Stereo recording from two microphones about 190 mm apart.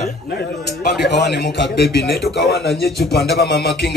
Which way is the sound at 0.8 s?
60° left (ahead or behind).